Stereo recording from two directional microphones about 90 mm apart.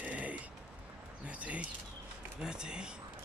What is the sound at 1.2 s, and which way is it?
Speech, 15° right (ahead or behind).